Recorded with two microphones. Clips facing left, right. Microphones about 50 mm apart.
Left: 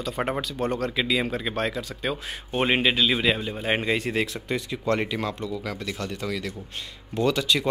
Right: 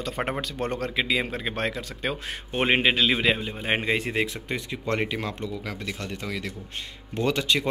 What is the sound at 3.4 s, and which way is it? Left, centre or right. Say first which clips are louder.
Speech: left 1 dB; centre.